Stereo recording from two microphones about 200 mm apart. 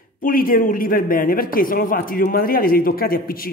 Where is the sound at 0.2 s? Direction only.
45° left (ahead or behind).